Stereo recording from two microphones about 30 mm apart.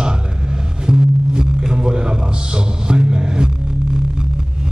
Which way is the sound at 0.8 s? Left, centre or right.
Right.